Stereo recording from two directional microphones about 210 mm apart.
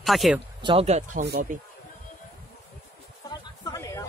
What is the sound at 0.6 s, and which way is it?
Speech, 25° right (ahead or behind).